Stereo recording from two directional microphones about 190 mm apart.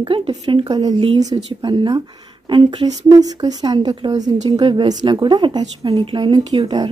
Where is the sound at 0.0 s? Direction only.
25° right (ahead or behind).